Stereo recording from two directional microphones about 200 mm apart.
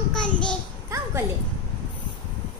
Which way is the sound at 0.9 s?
15° right (ahead or behind).